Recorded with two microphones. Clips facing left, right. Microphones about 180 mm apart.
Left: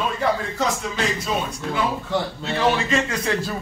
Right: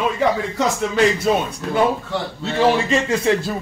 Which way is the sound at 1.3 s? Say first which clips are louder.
Right 7 dB; 55° right (ahead or behind).